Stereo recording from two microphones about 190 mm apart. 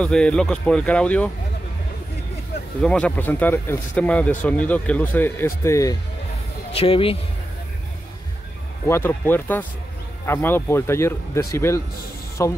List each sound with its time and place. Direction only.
0.0 s speech: 5° left (ahead or behind)
2.8 s speech: 5° left (ahead or behind)
6.7 s speech: 30° left (ahead or behind)
8.8 s speech: 10° left (ahead or behind)